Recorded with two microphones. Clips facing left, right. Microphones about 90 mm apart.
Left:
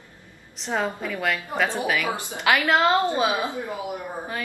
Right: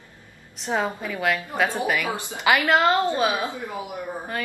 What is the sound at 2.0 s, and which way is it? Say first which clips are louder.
A woman's voice: right 1 dB; 20° left (ahead or behind).